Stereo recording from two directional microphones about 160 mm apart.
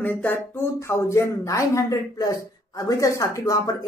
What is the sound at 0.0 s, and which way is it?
Speech, 10° left (ahead or behind).